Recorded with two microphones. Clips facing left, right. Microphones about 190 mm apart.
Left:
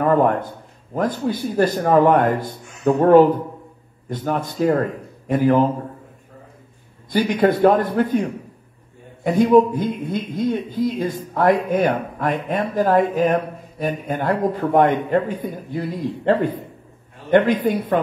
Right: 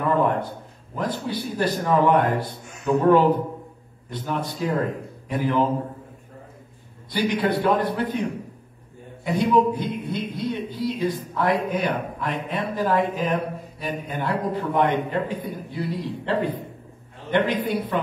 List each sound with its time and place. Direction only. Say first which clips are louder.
0.0 s a sound: left 5 dB; 45° left (ahead or behind)
0.9 s speech: left 5 dB; 45° left (ahead or behind)
4.1 s speech: left 4 dB; 45° left (ahead or behind)
7.1 s speech: left 5 dB; 45° left (ahead or behind)